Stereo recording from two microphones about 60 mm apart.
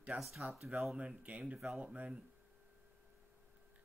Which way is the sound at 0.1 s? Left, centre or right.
Right.